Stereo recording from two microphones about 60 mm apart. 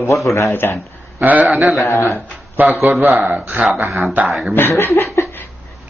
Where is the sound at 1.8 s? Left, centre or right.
Left.